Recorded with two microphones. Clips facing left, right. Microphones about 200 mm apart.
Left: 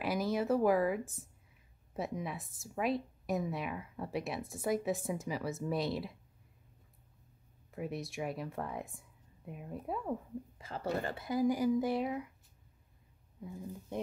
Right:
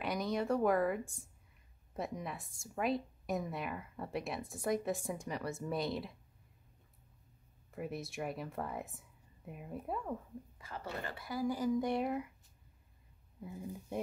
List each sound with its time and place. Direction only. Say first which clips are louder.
0.0 s speech: left 3 dB; 5° left (ahead or behind)
7.7 s speech: left 2 dB; centre (ahead or behind)
10.6 s speech: left 7 dB; 30° left (ahead or behind); by 12.3 s centre (ahead or behind)
13.4 s speech: even; 5° right (ahead or behind)